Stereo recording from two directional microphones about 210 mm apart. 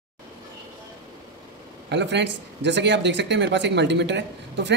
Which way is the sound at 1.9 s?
55° right (ahead or behind).